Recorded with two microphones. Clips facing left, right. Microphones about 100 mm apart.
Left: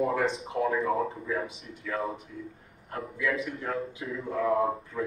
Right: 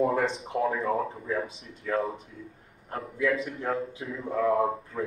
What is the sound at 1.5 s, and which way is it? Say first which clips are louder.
Speech: right 5 dB; 30° right (ahead or behind).